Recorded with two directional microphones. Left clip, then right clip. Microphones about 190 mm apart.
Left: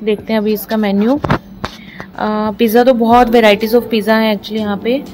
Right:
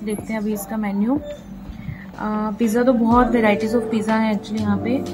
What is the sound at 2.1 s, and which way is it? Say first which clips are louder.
A woman's voice: left 8 dB; 50° left (ahead or behind).